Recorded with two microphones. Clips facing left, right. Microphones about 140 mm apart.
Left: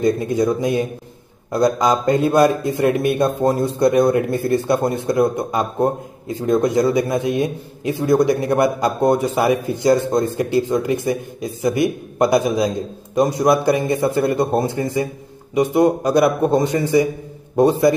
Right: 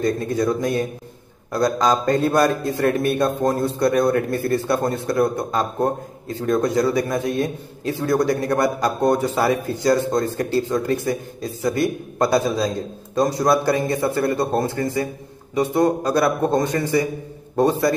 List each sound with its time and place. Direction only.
0.0 s a man's voice: 15° left (ahead or behind)